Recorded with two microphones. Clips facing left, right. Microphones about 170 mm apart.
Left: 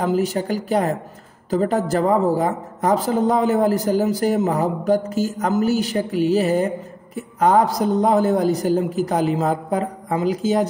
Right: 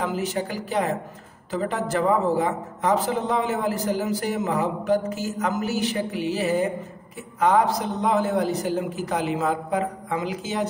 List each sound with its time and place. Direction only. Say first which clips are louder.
0.0 s a man's voice: left 6 dB; 40° left (ahead or behind)